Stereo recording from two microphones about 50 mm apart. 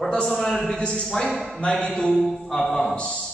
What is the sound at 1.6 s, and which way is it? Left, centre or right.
Speech, centre.